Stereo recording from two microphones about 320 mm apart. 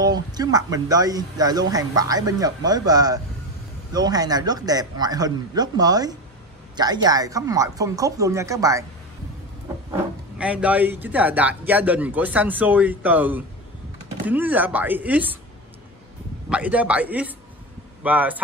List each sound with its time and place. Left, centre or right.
0.0 s speech: centre
9.8 s speech: centre
16.4 s speech: centre